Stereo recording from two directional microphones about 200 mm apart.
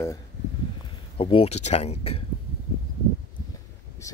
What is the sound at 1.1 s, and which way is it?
Speech, 30° left (ahead or behind).